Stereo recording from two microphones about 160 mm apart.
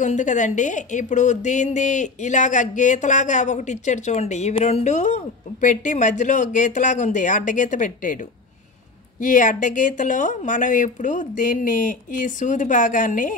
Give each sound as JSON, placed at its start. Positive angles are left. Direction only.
{"t": 0.0, "sound": "a woman's voice", "side_deg": 50}
{"t": 9.2, "sound": "a woman's voice", "side_deg": 55}